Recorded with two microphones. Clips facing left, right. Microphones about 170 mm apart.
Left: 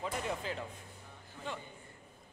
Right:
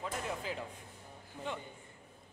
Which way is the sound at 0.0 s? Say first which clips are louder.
Left 2 dB; 5° right (ahead or behind).